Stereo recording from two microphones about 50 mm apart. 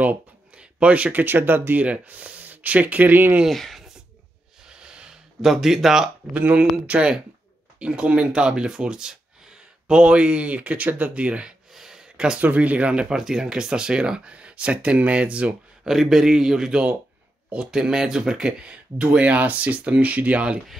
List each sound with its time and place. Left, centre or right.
0.6 s speech: right
1.2 s speech: right
1.8 s speech: right
3.4 s speech: centre
4.6 s a sound: centre
5.5 s speech: centre
6.3 s speech: right
11.7 s a sound: centre
12.4 s speech: right
13.1 s speech: centre
15.8 s speech: centre; by 20.6 s right